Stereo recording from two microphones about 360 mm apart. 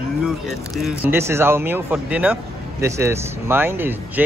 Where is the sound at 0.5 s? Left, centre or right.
Centre.